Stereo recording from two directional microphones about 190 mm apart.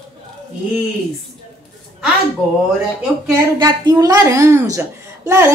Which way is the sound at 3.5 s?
20° right (ahead or behind).